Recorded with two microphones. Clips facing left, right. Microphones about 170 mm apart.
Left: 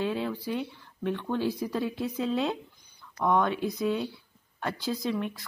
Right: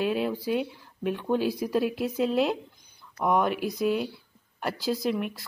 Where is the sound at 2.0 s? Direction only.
10° right (ahead or behind).